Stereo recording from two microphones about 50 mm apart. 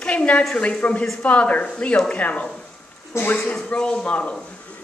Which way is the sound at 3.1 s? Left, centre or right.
Left.